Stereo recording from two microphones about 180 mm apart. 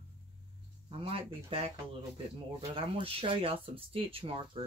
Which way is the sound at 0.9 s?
30° right (ahead or behind).